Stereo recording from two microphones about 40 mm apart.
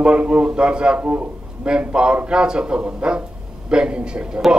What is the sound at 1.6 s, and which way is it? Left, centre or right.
A man's voice, right.